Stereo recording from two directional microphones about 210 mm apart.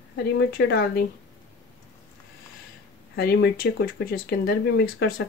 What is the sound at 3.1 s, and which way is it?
Speech, 50° left (ahead or behind).